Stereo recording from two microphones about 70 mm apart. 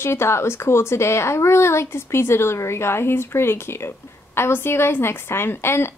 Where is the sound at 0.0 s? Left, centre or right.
Left.